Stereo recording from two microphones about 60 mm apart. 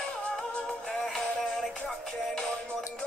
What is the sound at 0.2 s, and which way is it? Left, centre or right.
Music, centre.